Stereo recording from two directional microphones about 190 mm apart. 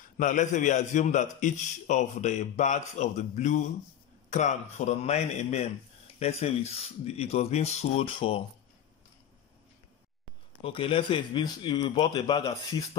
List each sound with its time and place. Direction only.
0.2 s a man's voice: 40° left (ahead or behind)
10.6 s speech: 25° left (ahead or behind)
11.8 s a man's voice: 30° left (ahead or behind)
12.1 s speech: 20° left (ahead or behind)